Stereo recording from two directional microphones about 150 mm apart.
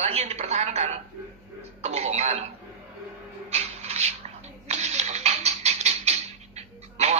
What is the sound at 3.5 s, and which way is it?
Rub, 45° right (ahead or behind).